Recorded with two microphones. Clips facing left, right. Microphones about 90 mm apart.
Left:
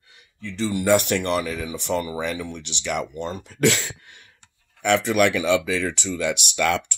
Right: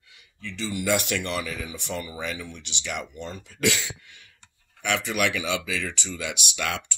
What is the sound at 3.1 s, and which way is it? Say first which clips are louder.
Speech: left 7 dB; 75° left (ahead or behind).